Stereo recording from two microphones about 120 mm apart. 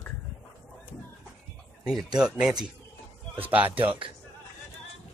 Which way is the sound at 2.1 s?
5° right (ahead or behind).